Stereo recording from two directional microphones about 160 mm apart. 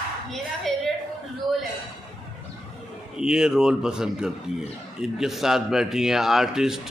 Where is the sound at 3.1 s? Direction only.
5° right (ahead or behind).